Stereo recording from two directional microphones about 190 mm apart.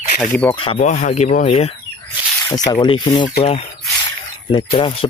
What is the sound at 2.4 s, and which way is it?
Speech, 20° left (ahead or behind).